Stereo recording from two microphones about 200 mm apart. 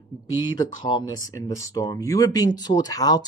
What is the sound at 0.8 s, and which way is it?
Speech, 20° left (ahead or behind).